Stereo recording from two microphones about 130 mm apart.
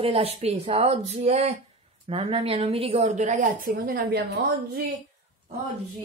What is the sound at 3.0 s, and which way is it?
Speech, 65° right (ahead or behind).